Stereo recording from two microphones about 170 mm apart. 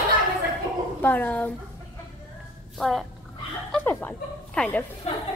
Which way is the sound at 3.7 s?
10° left (ahead or behind).